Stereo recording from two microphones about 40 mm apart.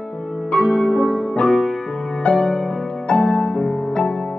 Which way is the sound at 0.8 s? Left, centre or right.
Left.